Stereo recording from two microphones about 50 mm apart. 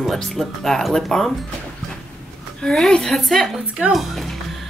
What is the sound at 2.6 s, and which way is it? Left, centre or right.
Speech, centre.